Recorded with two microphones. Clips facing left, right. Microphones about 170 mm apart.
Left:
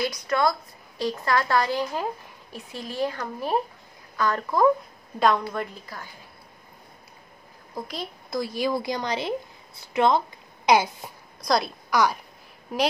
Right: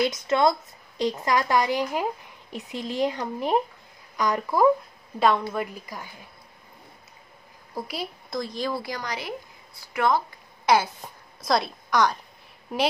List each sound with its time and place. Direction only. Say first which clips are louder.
0.0 s a woman's voice: right 3 dB; 25° right (ahead or behind)
7.7 s a woman's voice: right 1 dB; 10° right (ahead or behind)
8.3 s speech: left 4 dB; 5° left (ahead or behind)
11.4 s a woman's voice: even; centre (ahead or behind)